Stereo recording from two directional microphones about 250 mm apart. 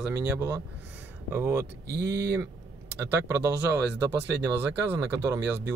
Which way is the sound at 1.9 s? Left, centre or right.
Right.